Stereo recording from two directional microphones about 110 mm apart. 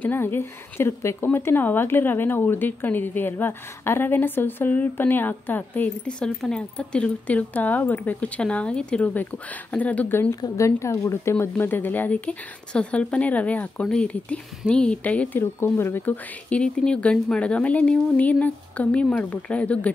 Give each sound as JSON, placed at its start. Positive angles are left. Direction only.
{"t": 0.0, "sound": "speech", "side_deg": 20}
{"t": 10.4, "sound": "speech", "side_deg": 25}